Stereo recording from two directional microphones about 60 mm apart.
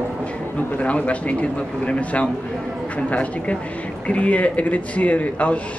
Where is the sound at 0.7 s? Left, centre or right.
Left.